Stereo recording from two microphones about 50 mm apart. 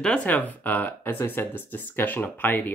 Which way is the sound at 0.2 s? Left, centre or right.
Left.